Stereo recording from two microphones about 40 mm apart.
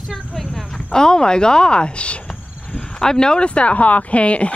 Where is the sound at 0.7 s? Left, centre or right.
Centre.